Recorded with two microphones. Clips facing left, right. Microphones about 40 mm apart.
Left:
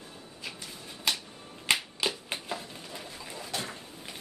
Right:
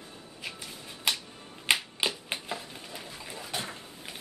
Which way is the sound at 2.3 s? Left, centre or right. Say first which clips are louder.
Even; centre.